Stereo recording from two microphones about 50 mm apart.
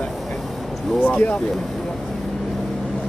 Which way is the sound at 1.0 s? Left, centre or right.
Left.